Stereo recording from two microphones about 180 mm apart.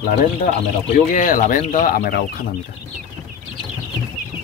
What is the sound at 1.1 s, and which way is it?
Speech, 45° left (ahead or behind).